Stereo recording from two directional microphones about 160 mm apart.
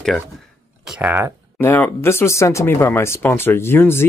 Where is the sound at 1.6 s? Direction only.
15° left (ahead or behind).